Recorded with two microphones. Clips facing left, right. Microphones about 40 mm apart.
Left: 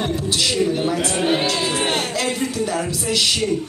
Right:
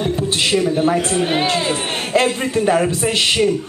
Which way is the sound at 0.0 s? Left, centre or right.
Right.